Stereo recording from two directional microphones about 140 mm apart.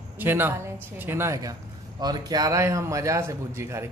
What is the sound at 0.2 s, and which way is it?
A woman's voice, 15° right (ahead or behind).